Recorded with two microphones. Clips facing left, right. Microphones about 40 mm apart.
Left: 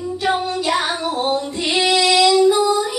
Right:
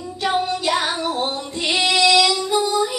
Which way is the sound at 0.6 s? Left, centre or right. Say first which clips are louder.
Left 1 dB; left.